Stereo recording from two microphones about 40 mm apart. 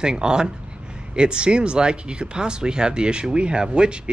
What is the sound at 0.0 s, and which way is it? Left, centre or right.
Speech, centre.